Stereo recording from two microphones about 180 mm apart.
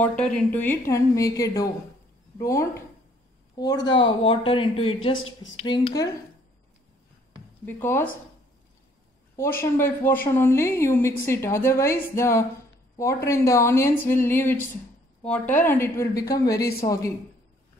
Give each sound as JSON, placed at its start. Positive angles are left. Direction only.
{"t": 0.0, "sound": "a woman's voice", "side_deg": 5}
{"t": 5.1, "sound": "speech", "side_deg": 90}
{"t": 5.6, "sound": "speech", "side_deg": 30}
{"t": 7.6, "sound": "a woman's voice", "side_deg": 10}
{"t": 9.4, "sound": "a woman's voice", "side_deg": 15}